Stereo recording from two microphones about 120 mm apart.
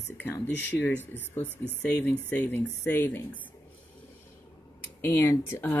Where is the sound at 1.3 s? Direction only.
15° left (ahead or behind).